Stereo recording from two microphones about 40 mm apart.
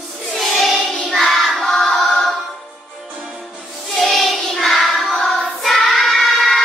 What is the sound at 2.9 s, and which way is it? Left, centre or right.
Music, centre.